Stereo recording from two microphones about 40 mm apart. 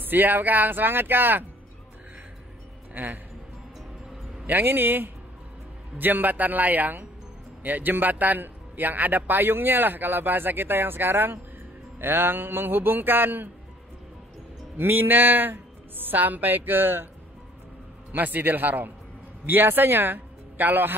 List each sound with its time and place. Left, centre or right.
0.0 s a man's voice: right
2.9 s speech: right
4.5 s a man's voice: right
14.8 s speech: right
18.1 s a man's voice: right